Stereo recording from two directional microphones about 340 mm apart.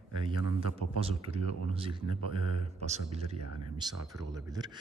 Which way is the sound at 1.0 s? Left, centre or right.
Centre.